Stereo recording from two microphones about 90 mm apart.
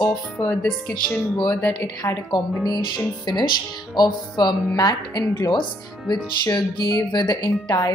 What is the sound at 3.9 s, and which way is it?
Speech, 55° left (ahead or behind).